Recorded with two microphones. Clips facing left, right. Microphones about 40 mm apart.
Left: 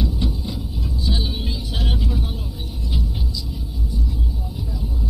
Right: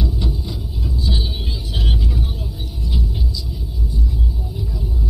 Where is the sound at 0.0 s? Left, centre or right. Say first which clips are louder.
Even; left.